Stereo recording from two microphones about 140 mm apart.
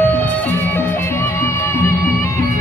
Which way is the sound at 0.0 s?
10° left (ahead or behind).